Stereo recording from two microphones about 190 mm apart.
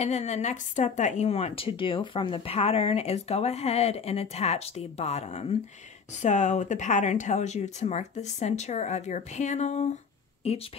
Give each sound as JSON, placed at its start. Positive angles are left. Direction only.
{"t": 0.0, "sound": "speech", "side_deg": 35}